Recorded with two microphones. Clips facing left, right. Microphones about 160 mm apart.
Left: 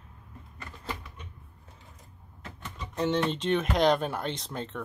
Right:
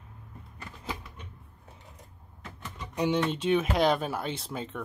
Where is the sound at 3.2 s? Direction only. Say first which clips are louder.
Right 1 dB; 5° right (ahead or behind).